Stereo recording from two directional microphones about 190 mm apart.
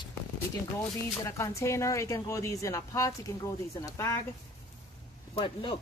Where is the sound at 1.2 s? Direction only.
15° left (ahead or behind).